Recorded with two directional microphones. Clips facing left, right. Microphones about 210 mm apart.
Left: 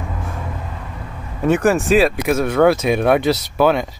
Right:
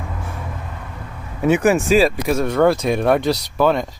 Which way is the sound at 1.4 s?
15° right (ahead or behind).